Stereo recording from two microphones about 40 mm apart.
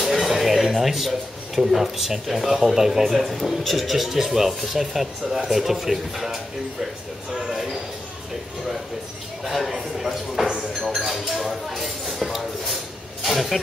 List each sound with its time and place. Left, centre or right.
0.0 s speech: centre
3.2 s speech: centre
7.3 s a sound: centre
9.4 s speech: centre
13.2 s vehicle: centre